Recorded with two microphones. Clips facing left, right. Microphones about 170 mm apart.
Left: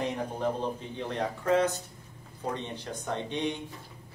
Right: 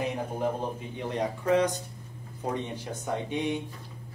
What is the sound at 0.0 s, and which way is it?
A woman's voice, 10° right (ahead or behind).